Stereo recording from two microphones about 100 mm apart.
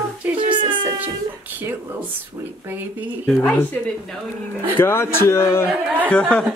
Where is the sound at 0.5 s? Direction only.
50° right (ahead or behind).